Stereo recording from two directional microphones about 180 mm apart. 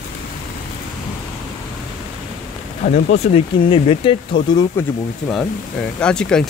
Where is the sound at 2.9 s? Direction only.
35° left (ahead or behind).